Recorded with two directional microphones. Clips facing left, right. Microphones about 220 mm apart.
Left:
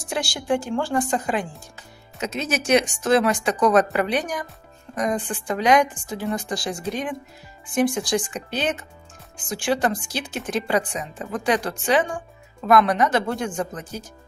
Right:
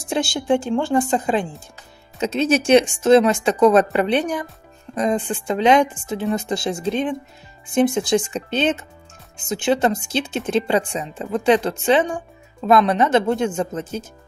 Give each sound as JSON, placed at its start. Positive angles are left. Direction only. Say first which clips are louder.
{"t": 0.1, "sound": "speech", "louder": "right 5 dB", "side_deg": -25}